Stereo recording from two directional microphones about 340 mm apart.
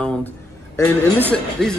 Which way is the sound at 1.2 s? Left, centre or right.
Centre.